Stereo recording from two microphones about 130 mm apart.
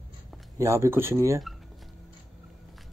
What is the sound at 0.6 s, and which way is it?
Speech, 20° right (ahead or behind).